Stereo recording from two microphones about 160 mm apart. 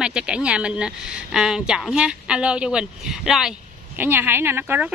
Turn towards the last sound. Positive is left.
turn(degrees=-15)  # may be behind; listen again after turning